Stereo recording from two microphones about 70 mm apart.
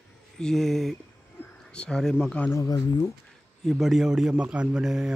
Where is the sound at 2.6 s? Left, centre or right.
Left.